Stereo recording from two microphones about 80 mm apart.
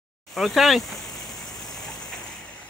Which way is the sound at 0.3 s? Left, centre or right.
Centre.